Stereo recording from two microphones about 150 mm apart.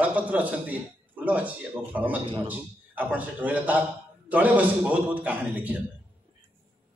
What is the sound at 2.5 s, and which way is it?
A man's voice, 10° right (ahead or behind).